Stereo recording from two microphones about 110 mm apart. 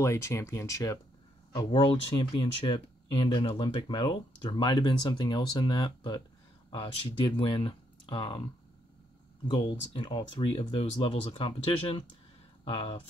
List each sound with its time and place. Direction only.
0.0 s speech: 25° left (ahead or behind)
1.5 s speech: 45° left (ahead or behind)
2.1 s speech: 45° left (ahead or behind)
9.5 s speech: 50° left (ahead or behind)
10.7 s speech: 70° left (ahead or behind)
11.0 s speech: 50° left (ahead or behind)